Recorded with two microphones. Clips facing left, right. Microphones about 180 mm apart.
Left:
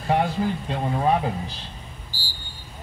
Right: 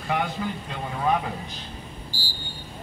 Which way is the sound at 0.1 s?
35° left (ahead or behind).